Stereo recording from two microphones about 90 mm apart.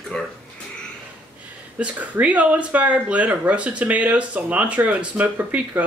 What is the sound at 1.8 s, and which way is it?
Speech, 15° right (ahead or behind).